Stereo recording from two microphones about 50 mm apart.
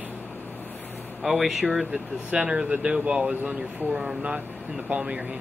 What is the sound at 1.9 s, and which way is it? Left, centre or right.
Speech, right.